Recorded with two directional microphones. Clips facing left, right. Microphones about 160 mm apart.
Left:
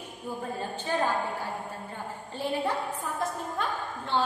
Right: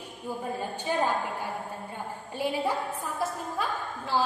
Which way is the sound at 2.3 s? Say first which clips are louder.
Right 1 dB; 10° right (ahead or behind).